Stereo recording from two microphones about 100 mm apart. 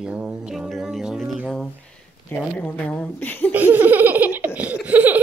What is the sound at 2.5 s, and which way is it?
Speech, 15° left (ahead or behind).